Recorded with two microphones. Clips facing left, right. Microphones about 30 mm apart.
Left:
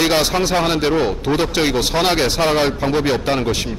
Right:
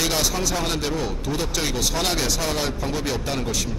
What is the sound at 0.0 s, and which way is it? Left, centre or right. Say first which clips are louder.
A man's voice: left 7 dB; left.